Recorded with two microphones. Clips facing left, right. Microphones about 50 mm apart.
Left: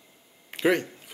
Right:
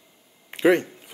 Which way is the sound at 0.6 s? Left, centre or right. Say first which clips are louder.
Right 5 dB; centre.